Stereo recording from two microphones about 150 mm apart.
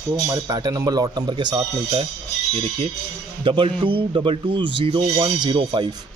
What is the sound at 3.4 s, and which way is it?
Speech, 35° right (ahead or behind).